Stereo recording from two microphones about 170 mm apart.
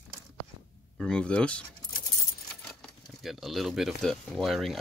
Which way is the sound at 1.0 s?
5° left (ahead or behind).